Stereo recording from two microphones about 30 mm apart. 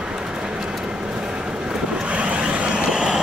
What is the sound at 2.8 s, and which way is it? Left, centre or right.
Vehicle, centre.